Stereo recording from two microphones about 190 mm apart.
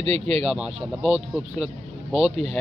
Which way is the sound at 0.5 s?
Centre (ahead or behind).